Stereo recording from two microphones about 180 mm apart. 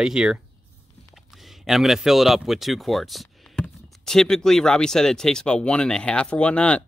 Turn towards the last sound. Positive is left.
turn(degrees=5)  # may be behind; listen again after turning